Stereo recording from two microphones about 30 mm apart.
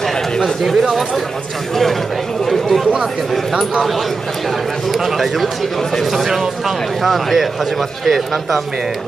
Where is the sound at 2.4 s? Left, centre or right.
Centre.